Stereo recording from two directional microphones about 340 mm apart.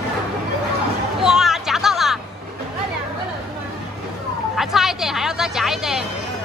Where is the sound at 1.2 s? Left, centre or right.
Centre.